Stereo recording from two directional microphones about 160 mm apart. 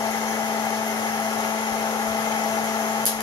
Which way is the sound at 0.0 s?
20° left (ahead or behind).